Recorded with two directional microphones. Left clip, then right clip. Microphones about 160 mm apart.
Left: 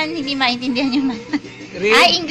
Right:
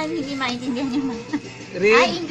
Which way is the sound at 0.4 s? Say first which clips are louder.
Left 10 dB; 30° left (ahead or behind).